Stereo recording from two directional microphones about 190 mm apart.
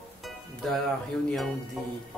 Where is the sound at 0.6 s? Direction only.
Centre (ahead or behind).